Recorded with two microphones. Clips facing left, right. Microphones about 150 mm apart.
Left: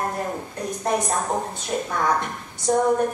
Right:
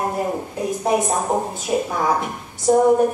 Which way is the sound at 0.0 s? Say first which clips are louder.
Right 4 dB; 10° right (ahead or behind).